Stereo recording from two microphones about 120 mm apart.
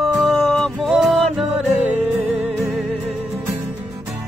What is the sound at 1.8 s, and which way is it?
Music, 15° right (ahead or behind).